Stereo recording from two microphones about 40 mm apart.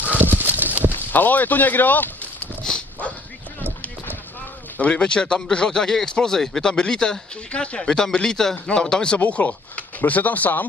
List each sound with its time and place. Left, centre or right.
0.2 s clip-clop: right
0.9 s a sound: left
4.7 s a man's voice: left
5.0 s speech: left
9.1 s speech: left